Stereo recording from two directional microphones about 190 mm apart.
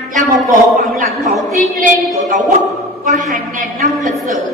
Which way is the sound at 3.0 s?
40° right (ahead or behind).